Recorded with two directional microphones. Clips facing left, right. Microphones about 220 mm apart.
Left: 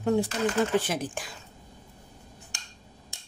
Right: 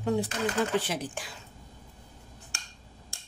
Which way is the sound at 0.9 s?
50° left (ahead or behind).